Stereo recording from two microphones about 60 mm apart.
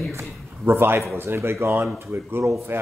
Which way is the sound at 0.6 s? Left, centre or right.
Right.